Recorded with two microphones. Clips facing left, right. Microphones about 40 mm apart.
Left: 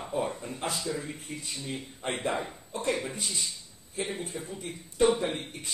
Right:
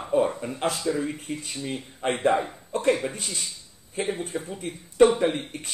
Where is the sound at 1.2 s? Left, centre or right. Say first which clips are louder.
Right 6 dB; right.